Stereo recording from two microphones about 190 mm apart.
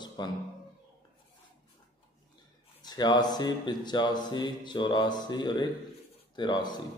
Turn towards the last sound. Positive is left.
turn(degrees=20)  # may be behind; listen again after turning